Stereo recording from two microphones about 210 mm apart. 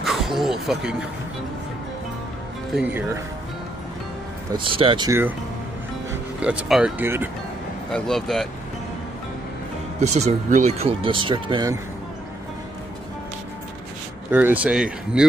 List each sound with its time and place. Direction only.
0.0 s speech: centre (ahead or behind)
2.7 s speech: 10° right (ahead or behind)
4.5 s speech: 25° right (ahead or behind)
6.4 s speech: 5° right (ahead or behind)
7.9 s speech: centre (ahead or behind)
9.9 s speech: 30° right (ahead or behind)
14.3 s speech: 10° right (ahead or behind)